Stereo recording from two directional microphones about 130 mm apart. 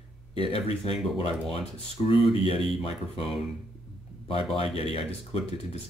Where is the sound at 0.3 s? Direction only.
40° right (ahead or behind).